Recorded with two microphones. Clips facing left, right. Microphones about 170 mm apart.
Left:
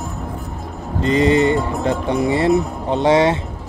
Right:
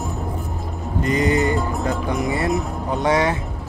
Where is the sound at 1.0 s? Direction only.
25° left (ahead or behind).